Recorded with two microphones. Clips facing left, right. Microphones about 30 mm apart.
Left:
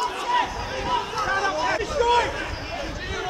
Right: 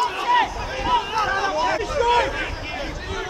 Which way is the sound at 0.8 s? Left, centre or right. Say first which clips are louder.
Right 5 dB; centre.